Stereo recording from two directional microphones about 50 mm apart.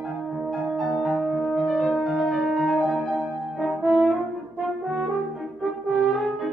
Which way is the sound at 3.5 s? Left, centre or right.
Centre.